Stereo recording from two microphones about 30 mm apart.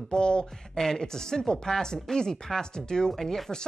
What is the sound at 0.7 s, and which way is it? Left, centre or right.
Speech, centre.